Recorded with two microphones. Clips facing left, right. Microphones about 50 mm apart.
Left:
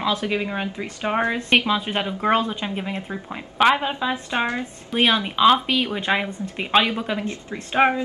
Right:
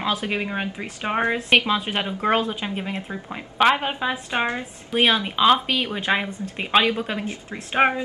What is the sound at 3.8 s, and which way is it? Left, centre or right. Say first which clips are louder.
Speech: left 1 dB; right.